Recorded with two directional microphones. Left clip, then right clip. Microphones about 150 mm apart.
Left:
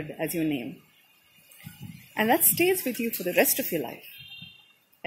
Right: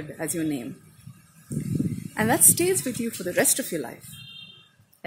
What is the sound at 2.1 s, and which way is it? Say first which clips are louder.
A woman's voice: right 1 dB; centre (ahead or behind).